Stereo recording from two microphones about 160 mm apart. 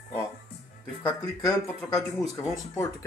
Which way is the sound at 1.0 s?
20° left (ahead or behind).